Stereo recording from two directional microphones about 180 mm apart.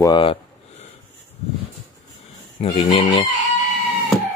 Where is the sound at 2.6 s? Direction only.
35° left (ahead or behind).